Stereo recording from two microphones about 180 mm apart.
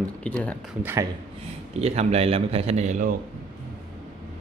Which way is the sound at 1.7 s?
35° right (ahead or behind).